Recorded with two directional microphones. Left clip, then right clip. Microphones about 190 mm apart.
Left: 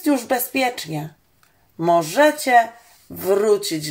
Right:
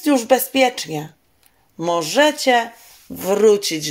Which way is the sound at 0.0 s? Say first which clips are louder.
Right 4 dB; 40° right (ahead or behind).